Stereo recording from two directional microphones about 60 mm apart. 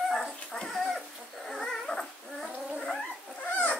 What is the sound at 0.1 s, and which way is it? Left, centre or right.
Dog, centre.